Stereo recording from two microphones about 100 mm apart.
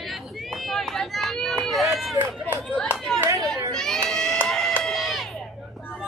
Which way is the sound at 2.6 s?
10° left (ahead or behind).